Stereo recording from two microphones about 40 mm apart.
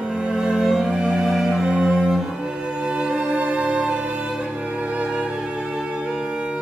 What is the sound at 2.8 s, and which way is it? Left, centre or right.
Music, right.